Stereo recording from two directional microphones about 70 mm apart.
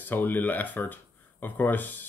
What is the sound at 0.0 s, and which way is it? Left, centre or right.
Speech, left.